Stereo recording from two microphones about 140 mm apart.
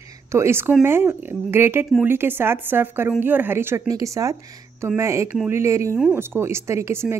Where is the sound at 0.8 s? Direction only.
15° right (ahead or behind).